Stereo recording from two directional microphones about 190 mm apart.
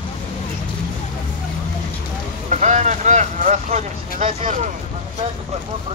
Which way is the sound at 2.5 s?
40° right (ahead or behind).